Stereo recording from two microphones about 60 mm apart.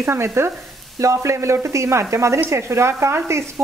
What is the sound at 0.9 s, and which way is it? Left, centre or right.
Speech, right.